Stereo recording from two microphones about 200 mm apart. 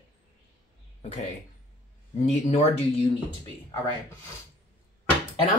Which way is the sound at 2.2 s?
30° left (ahead or behind).